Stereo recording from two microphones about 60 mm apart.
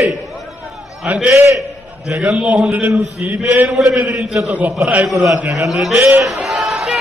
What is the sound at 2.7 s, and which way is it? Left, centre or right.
Speech, right.